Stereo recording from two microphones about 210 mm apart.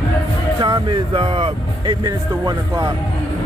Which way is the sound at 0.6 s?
20° right (ahead or behind).